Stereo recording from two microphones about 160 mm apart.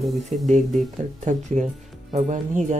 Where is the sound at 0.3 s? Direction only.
45° right (ahead or behind).